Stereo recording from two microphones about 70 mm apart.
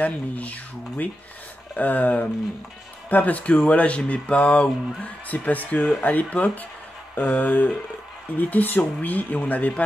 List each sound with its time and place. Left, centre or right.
0.0 s speech: left